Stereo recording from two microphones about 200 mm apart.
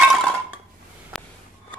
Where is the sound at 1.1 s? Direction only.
Centre (ahead or behind).